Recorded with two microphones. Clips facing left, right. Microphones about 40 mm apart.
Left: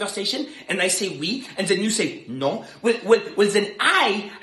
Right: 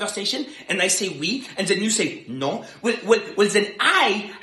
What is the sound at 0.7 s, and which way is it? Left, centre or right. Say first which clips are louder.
Speech: right 1 dB; left.